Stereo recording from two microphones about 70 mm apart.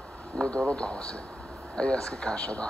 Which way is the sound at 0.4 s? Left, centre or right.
Centre.